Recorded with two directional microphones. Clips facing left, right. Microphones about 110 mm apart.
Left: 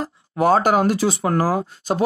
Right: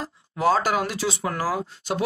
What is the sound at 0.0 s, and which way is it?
Speech, 50° left (ahead or behind).